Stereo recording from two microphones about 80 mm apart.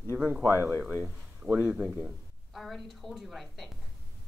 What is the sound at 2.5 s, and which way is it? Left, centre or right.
A woman's voice, centre.